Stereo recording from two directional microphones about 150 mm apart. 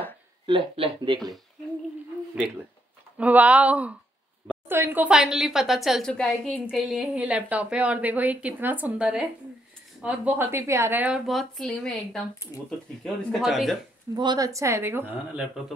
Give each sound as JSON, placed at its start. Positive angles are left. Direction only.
{"t": 0.5, "sound": "speech", "side_deg": -35}
{"t": 3.2, "sound": "a woman's voice", "side_deg": -10}
{"t": 14.1, "sound": "a woman's voice", "side_deg": -30}